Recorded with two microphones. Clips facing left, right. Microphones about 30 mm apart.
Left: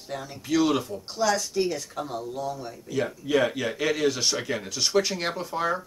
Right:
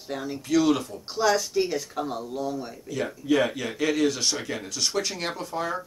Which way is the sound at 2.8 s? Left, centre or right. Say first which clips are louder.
Right 1 dB; centre.